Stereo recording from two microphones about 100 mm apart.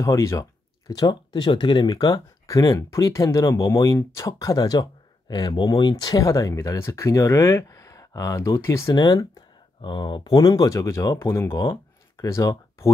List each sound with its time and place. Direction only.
0.0 s speech: 30° left (ahead or behind)
5.3 s speech: 50° left (ahead or behind); by 8.9 s 30° left (ahead or behind)
8.9 s speech: 45° left (ahead or behind)
9.8 s speech: 50° left (ahead or behind); by 12.9 s 35° left (ahead or behind)